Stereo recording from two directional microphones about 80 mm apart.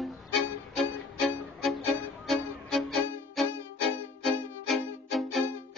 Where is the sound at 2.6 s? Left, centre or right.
Centre.